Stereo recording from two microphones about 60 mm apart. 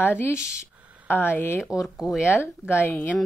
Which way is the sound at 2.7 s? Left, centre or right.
Left.